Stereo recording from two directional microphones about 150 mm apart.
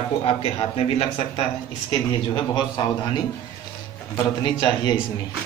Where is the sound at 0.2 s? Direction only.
40° left (ahead or behind).